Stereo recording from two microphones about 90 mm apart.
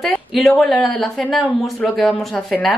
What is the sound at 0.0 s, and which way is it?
Speech, 5° left (ahead or behind).